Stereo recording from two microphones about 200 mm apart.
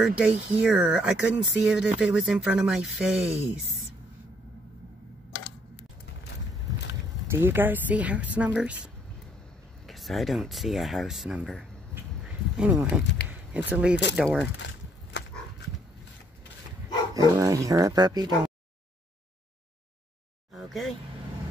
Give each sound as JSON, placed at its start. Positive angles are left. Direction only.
{"t": 0.0, "sound": "speech", "side_deg": -5}
{"t": 7.2, "sound": "speech", "side_deg": -10}
{"t": 11.9, "sound": "duck", "side_deg": -5}
{"t": 12.9, "sound": "speech", "side_deg": -5}
{"t": 15.1, "sound": "horse", "side_deg": 65}
{"t": 17.1, "sound": "speech", "side_deg": -15}
{"t": 20.5, "sound": "speech", "side_deg": 0}